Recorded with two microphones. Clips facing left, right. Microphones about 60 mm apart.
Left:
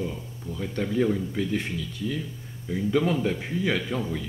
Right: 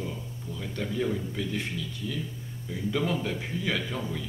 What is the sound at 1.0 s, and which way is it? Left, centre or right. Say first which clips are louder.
Speech: left 6 dB; left.